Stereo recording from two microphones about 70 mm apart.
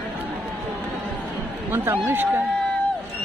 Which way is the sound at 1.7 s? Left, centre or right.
Right.